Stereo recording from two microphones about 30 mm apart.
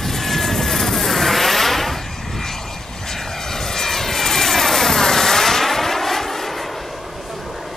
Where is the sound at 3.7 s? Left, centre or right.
Centre.